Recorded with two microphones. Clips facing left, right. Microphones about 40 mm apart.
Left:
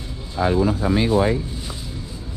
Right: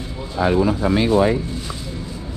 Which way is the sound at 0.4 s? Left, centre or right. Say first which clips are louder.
Right 2 dB; right.